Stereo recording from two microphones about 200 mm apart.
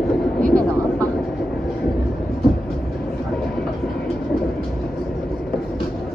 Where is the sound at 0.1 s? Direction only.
5° left (ahead or behind).